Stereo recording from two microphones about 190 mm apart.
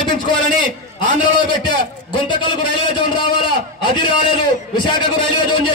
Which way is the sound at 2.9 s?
25° left (ahead or behind).